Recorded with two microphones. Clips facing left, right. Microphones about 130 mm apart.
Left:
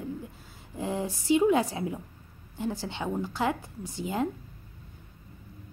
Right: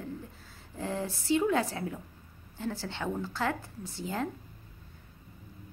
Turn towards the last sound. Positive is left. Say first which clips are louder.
# left 4 dB
turn(degrees=15)  # may be behind; listen again after turning